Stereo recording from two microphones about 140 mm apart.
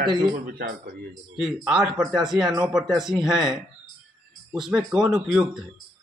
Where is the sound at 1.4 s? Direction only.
5° right (ahead or behind).